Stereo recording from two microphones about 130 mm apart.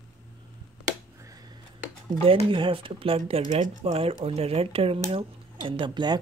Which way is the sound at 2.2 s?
40° right (ahead or behind).